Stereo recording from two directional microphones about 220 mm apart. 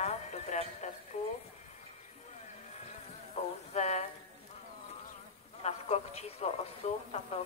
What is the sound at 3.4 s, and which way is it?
Music, 25° left (ahead or behind).